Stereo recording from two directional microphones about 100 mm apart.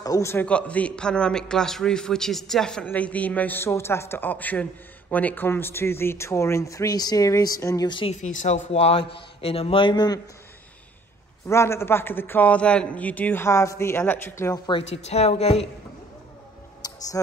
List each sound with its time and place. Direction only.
0.0 s a man's voice: 40° left (ahead or behind)
0.5 s a man's voice: 10° left (ahead or behind); by 7.9 s 35° left (ahead or behind)
7.9 s speech: 60° left (ahead or behind)
8.7 s a man's voice: 85° left; by 10.2 s 45° left (ahead or behind)
11.4 s a man's voice: 25° left (ahead or behind)
14.7 s speech: 80° left
16.8 s a sound: 40° left (ahead or behind)